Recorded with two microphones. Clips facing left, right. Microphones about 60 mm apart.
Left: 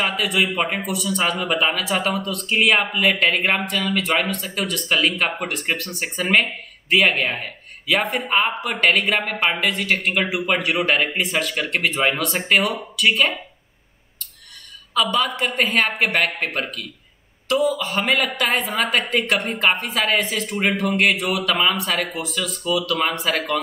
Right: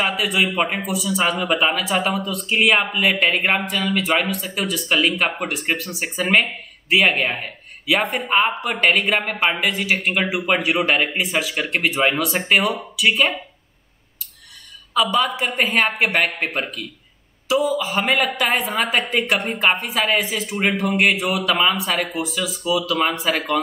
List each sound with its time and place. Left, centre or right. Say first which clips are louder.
0.0 s speech: right 1 dB; centre
15.0 s speech: right 1 dB; centre